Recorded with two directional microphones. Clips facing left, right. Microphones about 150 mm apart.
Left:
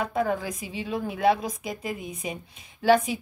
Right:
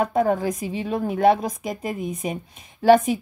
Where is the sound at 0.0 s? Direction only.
45° right (ahead or behind).